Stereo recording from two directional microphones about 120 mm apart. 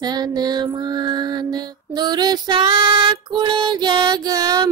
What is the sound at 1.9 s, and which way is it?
Female singing, 35° right (ahead or behind).